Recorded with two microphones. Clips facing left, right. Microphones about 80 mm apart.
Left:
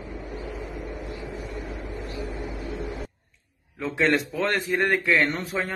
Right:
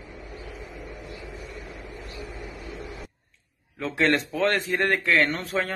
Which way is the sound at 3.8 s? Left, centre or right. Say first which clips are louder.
Even; centre.